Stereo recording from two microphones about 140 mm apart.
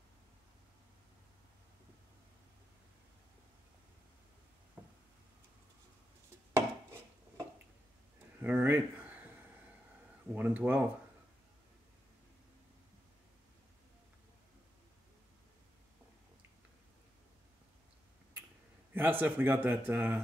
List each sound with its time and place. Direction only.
6.5 s a sound: 20° right (ahead or behind)
10.3 s speech: 10° right (ahead or behind)
18.9 s speech: 15° right (ahead or behind)